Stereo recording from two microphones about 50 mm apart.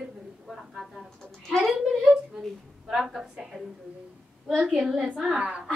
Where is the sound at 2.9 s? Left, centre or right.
Centre.